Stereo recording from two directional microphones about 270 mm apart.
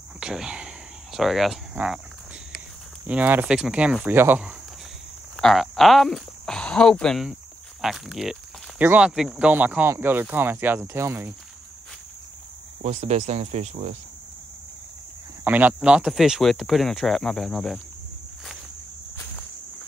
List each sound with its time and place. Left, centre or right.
0.2 s cricket: centre
3.1 s speech: centre
12.8 s speech: right
15.4 s speech: centre